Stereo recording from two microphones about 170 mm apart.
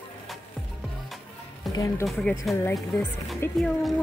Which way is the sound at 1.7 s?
20° left (ahead or behind).